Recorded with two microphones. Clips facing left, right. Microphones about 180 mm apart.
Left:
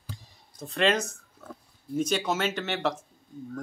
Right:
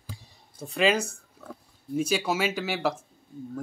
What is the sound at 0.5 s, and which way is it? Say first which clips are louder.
Speech: right 1 dB; 10° right (ahead or behind).